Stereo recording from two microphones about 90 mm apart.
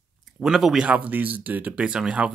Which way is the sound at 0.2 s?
Centre (ahead or behind).